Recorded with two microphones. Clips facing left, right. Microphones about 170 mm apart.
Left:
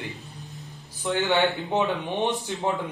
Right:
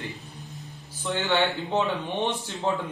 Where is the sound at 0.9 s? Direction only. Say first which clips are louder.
Left 3 dB; 15° left (ahead or behind).